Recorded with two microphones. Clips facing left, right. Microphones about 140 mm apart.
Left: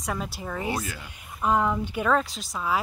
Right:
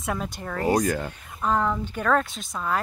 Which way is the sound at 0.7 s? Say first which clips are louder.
Right 9 dB; 45° right (ahead or behind).